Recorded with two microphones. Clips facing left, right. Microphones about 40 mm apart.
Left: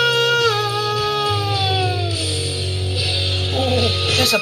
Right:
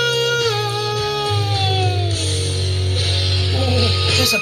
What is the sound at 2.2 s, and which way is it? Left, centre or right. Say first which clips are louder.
Music: even; right.